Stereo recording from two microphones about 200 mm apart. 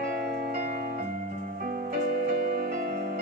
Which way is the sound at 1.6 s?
45° right (ahead or behind).